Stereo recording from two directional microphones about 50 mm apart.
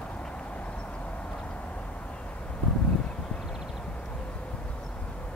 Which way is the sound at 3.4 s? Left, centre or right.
Centre.